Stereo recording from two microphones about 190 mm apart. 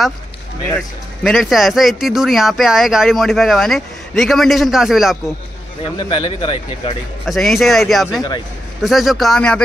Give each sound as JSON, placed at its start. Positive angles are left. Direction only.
{"t": 1.2, "sound": "speech", "side_deg": 0}
{"t": 5.9, "sound": "speech", "side_deg": 25}
{"t": 7.2, "sound": "speech", "side_deg": 0}